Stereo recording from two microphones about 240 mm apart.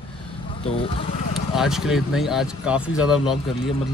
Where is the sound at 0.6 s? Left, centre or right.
Left.